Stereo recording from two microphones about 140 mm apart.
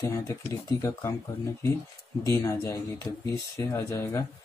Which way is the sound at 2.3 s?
20° left (ahead or behind).